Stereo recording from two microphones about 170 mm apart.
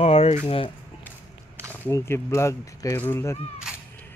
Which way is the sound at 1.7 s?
15° left (ahead or behind).